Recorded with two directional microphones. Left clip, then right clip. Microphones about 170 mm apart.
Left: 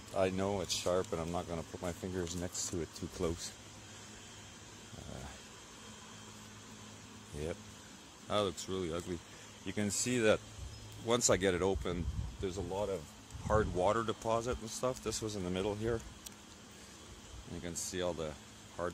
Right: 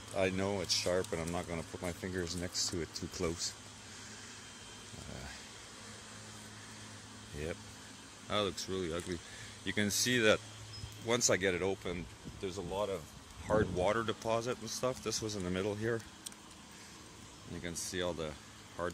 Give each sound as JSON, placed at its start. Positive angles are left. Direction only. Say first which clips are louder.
{"t": 0.1, "sound": "speech", "louder": "even", "side_deg": -5}
{"t": 2.8, "sound": "speech", "louder": "even", "side_deg": 0}
{"t": 8.3, "sound": "speech", "louder": "even", "side_deg": 10}
{"t": 9.7, "sound": "speech", "louder": "right 4 dB", "side_deg": -5}
{"t": 11.1, "sound": "speech", "louder": "left 1 dB", "side_deg": 15}
{"t": 11.6, "sound": "speech", "louder": "left 2 dB", "side_deg": 30}
{"t": 13.5, "sound": "speech", "louder": "even", "side_deg": 15}
{"t": 17.6, "sound": "speech", "louder": "even", "side_deg": 0}